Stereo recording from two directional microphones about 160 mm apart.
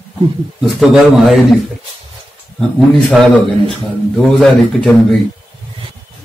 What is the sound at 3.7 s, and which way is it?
A man's voice, 5° left (ahead or behind).